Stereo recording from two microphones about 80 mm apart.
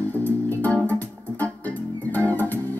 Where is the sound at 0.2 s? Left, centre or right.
Left.